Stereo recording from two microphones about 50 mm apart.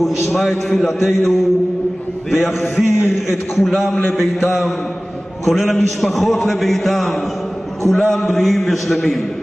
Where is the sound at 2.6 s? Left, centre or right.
Left.